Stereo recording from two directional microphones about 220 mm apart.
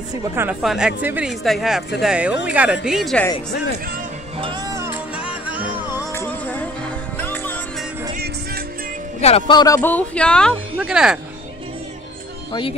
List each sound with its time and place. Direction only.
0.4 s speech: 5° right (ahead or behind)
4.4 s music: 20° right (ahead or behind)
5.9 s music: 10° left (ahead or behind)
9.2 s speech: 25° left (ahead or behind)
9.8 s speech: 5° left (ahead or behind)